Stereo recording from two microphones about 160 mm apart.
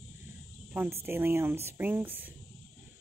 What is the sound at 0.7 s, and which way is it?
Speech, 15° right (ahead or behind).